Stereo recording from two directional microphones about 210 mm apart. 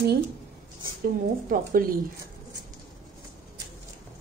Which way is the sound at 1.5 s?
40° right (ahead or behind).